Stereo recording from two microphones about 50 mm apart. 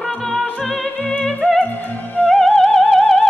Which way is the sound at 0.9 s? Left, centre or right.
Left.